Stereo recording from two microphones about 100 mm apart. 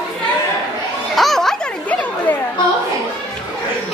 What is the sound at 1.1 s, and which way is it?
Music, centre (ahead or behind).